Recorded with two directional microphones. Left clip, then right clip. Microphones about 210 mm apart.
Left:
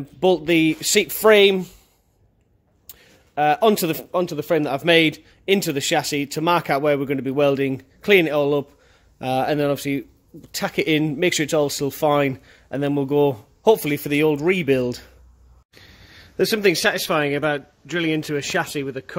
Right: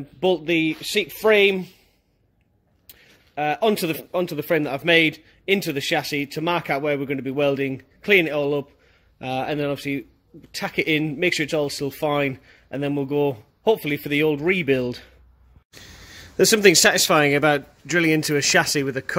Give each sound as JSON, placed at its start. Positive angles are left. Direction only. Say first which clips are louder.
{"t": 0.2, "sound": "a man's voice", "louder": "left 3 dB", "side_deg": 10}
{"t": 2.9, "sound": "a man's voice", "louder": "left 3 dB", "side_deg": 10}